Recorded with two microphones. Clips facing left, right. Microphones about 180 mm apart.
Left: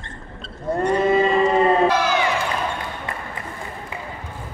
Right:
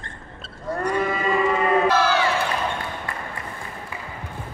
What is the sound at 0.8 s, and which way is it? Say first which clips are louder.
Livestock: left 6 dB; 25° left (ahead or behind).